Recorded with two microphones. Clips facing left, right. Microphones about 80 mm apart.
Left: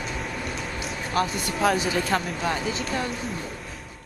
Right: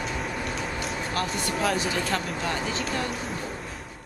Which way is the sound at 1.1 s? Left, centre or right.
Centre.